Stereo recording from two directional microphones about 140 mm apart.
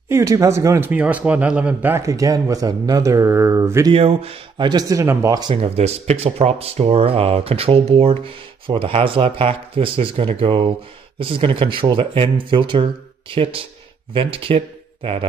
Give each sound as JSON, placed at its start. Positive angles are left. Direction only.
{"t": 0.1, "sound": "speech", "side_deg": -20}
{"t": 3.9, "sound": "speech", "side_deg": -45}
{"t": 4.6, "sound": "speech", "side_deg": -25}
{"t": 5.5, "sound": "speech", "side_deg": -45}